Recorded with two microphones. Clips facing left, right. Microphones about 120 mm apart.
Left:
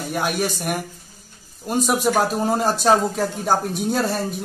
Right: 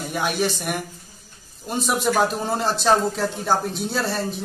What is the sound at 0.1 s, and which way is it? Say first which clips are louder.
Speech: even; 5° left (ahead or behind).